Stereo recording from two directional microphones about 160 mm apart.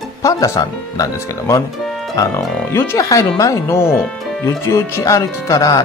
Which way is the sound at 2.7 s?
15° left (ahead or behind).